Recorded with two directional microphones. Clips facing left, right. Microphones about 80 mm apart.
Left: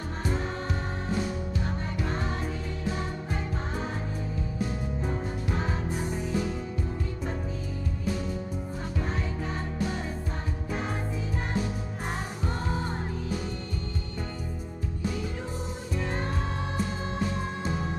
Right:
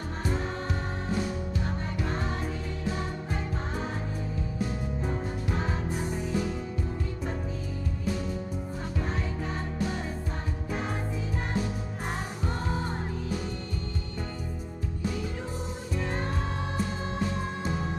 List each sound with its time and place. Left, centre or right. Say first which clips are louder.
0.2 s music: even; centre
5.0 s music: even; centre
9.0 s music: even; centre
16.0 s music: even; centre